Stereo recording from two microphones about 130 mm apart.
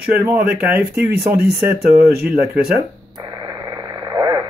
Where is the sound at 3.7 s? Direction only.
30° right (ahead or behind).